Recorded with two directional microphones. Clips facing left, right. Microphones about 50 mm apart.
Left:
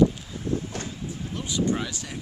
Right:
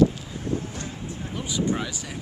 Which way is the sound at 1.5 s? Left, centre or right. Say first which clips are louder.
Even; centre.